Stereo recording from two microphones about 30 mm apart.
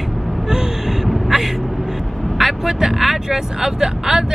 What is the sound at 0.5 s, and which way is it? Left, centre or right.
Gasp, centre.